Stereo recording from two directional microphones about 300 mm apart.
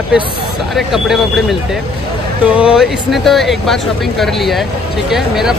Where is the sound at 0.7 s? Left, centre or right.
Centre.